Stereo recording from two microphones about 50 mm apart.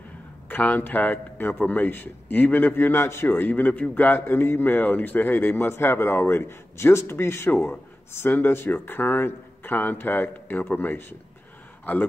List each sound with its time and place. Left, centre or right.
0.5 s a man's voice: left
8.1 s a man's voice: left